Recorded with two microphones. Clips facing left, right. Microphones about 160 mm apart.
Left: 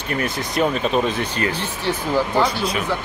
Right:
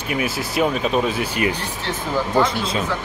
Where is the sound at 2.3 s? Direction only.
25° right (ahead or behind).